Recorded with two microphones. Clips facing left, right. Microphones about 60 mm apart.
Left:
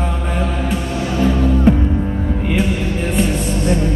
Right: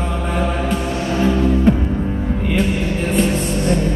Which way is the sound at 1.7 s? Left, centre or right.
Centre.